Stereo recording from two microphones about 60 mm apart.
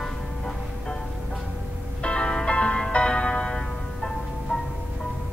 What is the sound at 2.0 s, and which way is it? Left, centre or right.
Music, centre.